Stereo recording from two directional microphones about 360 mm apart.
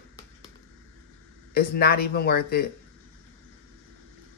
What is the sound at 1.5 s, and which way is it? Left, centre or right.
Speech, left.